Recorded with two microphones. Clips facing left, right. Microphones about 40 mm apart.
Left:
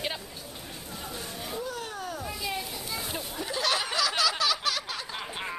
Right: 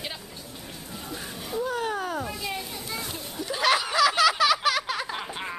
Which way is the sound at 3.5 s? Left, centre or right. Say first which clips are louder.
Right 6 dB; centre.